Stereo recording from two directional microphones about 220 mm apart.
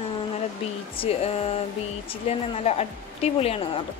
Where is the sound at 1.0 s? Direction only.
30° left (ahead or behind).